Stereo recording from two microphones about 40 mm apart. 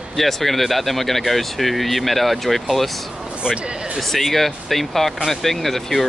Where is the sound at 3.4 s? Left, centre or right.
Right.